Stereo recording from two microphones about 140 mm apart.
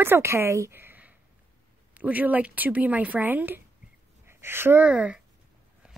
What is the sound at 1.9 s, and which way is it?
Speech, 10° right (ahead or behind).